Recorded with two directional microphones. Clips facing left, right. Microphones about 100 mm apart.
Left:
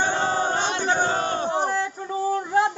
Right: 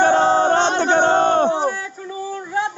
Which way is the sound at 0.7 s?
70° right (ahead or behind).